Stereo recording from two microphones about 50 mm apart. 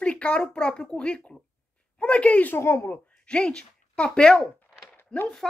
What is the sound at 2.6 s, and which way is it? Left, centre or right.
Speech, left.